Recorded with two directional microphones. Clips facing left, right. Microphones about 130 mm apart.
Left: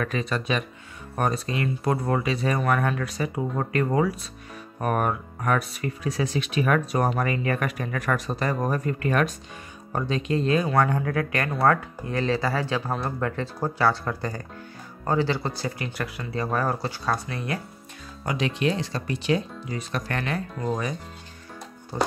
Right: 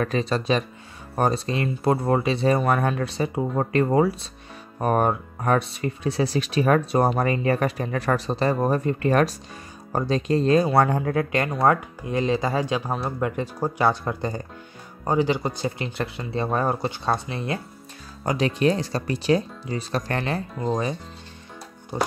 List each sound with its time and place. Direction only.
0.0 s speech: 30° right (ahead or behind)
18.2 s speech: 40° right (ahead or behind)